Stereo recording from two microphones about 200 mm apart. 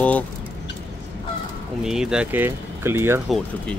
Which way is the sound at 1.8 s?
5° right (ahead or behind).